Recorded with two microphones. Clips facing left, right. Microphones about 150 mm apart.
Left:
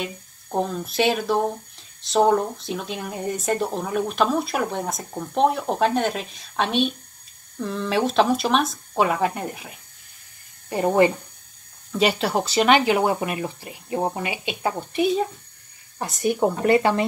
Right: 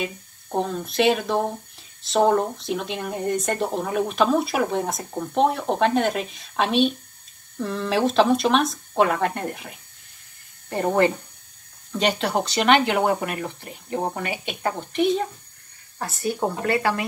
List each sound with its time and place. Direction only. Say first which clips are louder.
0.0 s speech: right 2 dB; centre (ahead or behind)
16.0 s speech: left 4 dB; 15° left (ahead or behind)